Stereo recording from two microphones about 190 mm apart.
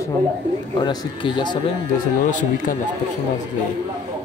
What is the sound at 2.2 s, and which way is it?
Speech, 45° left (ahead or behind).